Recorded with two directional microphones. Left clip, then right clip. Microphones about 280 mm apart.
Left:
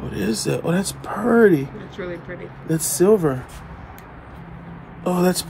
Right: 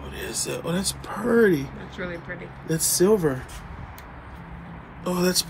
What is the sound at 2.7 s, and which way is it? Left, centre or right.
Speech, left.